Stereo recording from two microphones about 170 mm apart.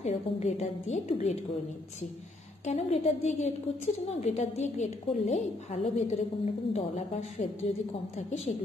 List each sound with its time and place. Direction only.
0.0 s a woman's voice: 40° left (ahead or behind)
2.6 s a woman's voice: 40° left (ahead or behind)